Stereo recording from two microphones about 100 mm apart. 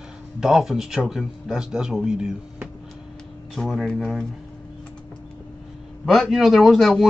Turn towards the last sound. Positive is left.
turn(degrees=0)  # may be behind; listen again after turning